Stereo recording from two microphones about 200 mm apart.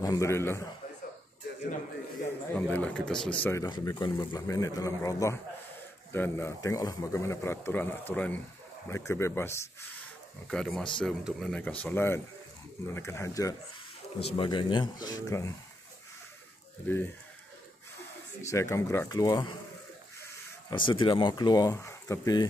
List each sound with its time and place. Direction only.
0.0 s speech: 15° left (ahead or behind)
2.5 s speech: 5° left (ahead or behind)
3.4 s speech: 20° left (ahead or behind)
16.9 s speech: 10° left (ahead or behind)
18.4 s speech: 15° left (ahead or behind)
20.7 s speech: 25° left (ahead or behind)